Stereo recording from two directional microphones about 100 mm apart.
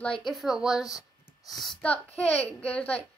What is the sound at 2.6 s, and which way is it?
Speech, 15° left (ahead or behind).